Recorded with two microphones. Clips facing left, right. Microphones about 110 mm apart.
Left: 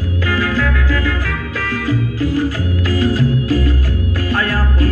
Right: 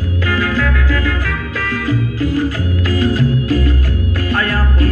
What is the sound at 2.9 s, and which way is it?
Music, 50° right (ahead or behind).